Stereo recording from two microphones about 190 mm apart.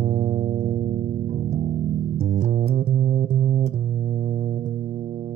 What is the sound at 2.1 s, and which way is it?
Music, 50° right (ahead or behind).